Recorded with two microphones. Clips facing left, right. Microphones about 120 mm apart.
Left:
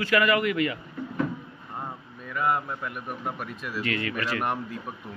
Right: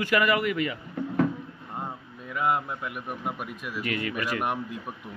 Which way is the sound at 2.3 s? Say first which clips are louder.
Even; 15° right (ahead or behind).